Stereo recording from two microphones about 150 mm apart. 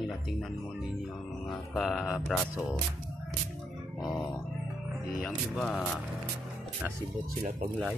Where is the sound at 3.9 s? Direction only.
Centre (ahead or behind).